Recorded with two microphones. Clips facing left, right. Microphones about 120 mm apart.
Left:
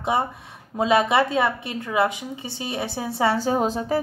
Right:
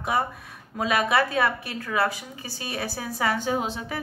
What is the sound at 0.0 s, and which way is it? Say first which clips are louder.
A woman's voice: left 3 dB; 25° left (ahead or behind).